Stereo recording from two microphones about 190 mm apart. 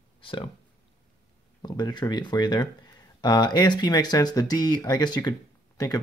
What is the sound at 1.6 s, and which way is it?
Speech, 20° left (ahead or behind).